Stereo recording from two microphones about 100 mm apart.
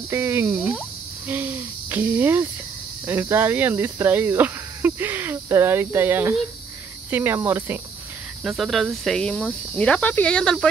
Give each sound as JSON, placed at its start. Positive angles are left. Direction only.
{"t": 0.1, "sound": "speech", "side_deg": -25}
{"t": 1.2, "sound": "a sound", "side_deg": -20}
{"t": 3.1, "sound": "speech", "side_deg": -20}
{"t": 8.5, "sound": "speech", "side_deg": 0}